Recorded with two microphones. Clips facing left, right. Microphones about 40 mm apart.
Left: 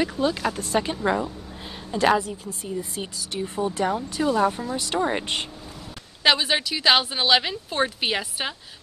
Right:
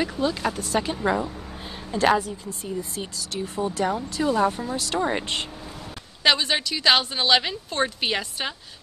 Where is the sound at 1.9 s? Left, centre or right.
Centre.